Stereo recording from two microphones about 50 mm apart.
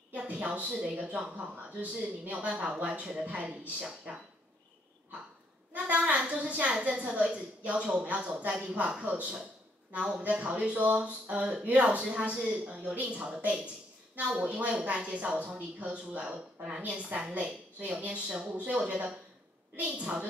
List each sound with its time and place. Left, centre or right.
0.3 s a woman's voice: right
5.7 s a woman's voice: right